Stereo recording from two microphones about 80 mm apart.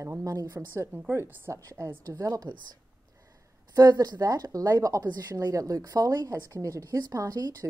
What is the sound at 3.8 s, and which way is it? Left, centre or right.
Speech, right.